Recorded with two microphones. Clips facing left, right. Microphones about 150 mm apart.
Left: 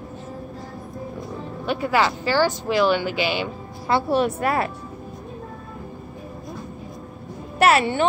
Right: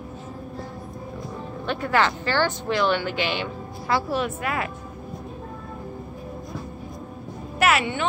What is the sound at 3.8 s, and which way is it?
Speech, 25° left (ahead or behind).